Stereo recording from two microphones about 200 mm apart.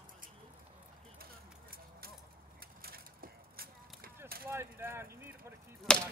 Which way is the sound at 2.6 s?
50° right (ahead or behind).